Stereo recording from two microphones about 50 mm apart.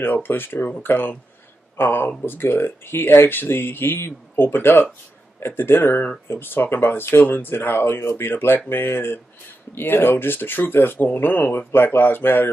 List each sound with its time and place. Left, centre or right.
0.0 s speech: left